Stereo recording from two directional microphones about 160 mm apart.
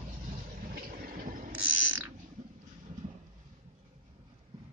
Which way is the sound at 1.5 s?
10° right (ahead or behind).